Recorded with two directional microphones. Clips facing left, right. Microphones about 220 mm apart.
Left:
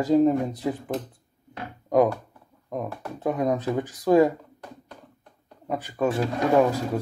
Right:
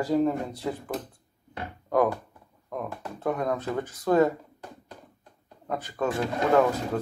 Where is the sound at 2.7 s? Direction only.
15° left (ahead or behind).